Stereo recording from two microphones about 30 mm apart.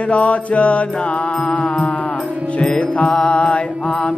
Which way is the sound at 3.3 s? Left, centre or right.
Left.